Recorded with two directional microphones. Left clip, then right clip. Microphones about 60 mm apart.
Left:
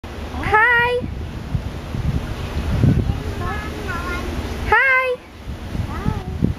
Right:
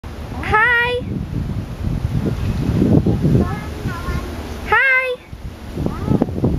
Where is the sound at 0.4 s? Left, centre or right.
Centre.